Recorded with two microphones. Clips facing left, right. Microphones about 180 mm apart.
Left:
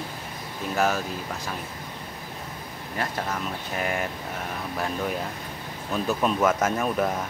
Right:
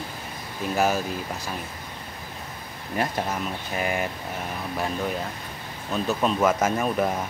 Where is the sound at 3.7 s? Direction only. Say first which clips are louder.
Right 2 dB; 5° right (ahead or behind).